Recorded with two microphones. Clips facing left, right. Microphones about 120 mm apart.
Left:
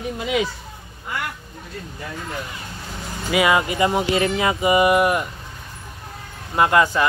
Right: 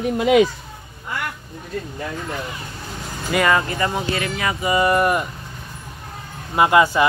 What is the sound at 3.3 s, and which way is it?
Speech, 10° left (ahead or behind).